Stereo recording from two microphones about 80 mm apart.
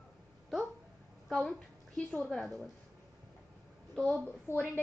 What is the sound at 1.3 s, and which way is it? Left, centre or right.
A woman's voice, centre.